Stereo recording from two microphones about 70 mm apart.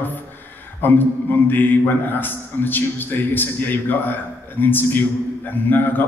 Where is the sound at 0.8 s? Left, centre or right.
Left.